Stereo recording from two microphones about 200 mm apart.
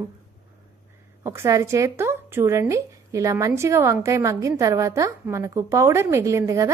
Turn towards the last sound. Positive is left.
turn(degrees=-15)  # may be behind; listen again after turning